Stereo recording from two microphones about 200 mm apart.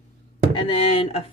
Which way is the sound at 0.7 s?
30° left (ahead or behind).